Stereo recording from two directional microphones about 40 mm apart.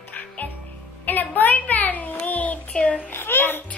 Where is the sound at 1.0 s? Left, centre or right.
Left.